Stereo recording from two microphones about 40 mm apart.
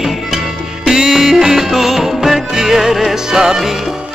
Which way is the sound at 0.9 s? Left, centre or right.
Centre.